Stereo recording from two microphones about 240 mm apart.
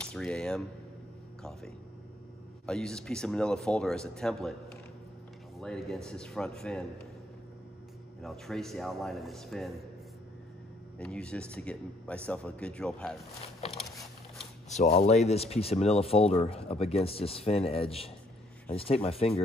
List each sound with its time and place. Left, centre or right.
0.0 s speech: centre
2.6 s speech: centre
5.6 s speech: centre
8.2 s speech: centre
11.0 s speech: centre
13.7 s a sound: centre
14.7 s speech: left